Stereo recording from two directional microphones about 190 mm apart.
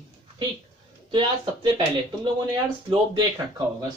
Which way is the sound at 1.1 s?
25° right (ahead or behind).